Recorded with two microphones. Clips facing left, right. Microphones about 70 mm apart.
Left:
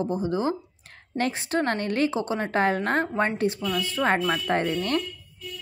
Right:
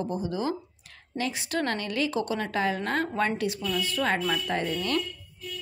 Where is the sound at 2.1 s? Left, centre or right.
Left.